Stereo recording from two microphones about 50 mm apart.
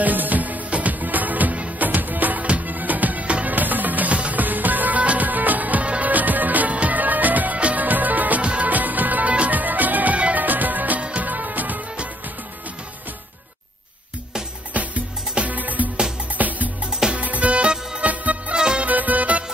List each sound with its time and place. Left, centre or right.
0.0 s music: right
14.7 s music: right
18.6 s music: centre
18.9 s music: right